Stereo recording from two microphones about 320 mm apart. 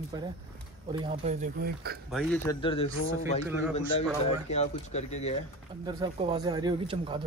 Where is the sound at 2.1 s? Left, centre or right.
Centre.